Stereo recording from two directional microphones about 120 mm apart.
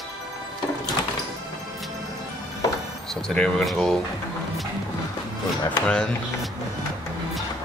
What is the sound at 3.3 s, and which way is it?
Speech, 5° left (ahead or behind).